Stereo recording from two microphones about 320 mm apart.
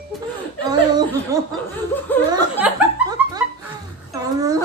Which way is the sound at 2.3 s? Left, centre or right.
Centre.